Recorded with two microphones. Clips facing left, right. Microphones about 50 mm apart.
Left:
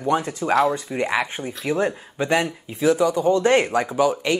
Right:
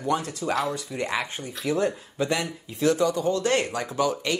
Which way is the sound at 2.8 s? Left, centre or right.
Centre.